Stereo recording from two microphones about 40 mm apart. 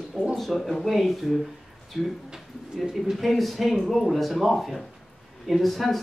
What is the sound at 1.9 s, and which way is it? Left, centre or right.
Speech, centre.